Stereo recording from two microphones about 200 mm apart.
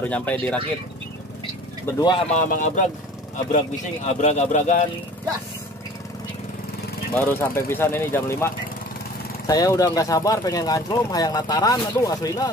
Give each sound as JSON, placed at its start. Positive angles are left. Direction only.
{"t": 0.0, "sound": "speech", "side_deg": 5}
{"t": 2.0, "sound": "speech", "side_deg": 20}
{"t": 2.3, "sound": "speech", "side_deg": 40}
{"t": 7.2, "sound": "speech", "side_deg": 10}